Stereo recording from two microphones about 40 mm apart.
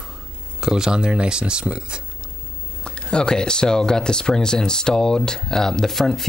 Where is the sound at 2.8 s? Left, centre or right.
Left.